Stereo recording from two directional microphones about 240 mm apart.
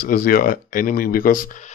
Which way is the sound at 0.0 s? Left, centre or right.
Left.